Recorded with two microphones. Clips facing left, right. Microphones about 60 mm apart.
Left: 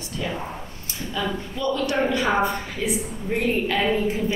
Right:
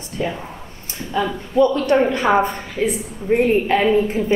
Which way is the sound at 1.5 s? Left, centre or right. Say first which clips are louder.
Right 10 dB; right.